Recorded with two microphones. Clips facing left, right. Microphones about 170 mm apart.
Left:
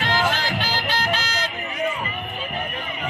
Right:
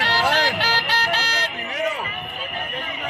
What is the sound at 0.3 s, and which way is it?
Music, 70° right (ahead or behind).